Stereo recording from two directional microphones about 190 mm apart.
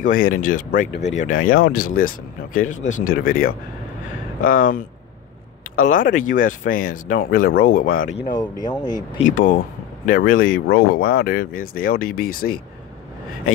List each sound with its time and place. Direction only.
0.0 s speech: 45° left (ahead or behind)
0.9 s speech: 65° left (ahead or behind)
1.2 s speech: 45° left (ahead or behind)
8.3 s speech: 20° left (ahead or behind)
9.2 s speech: 45° left (ahead or behind)